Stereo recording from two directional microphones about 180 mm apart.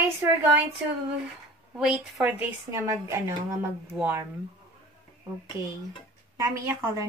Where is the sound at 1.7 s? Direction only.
5° right (ahead or behind).